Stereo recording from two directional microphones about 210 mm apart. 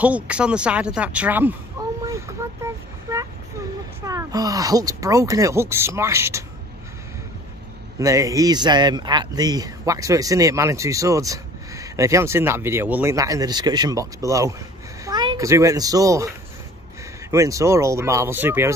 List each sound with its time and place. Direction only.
0.0 s a sound: 5° right (ahead or behind)
4.0 s speech: 15° right (ahead or behind)
8.0 s a child's voice: 15° right (ahead or behind)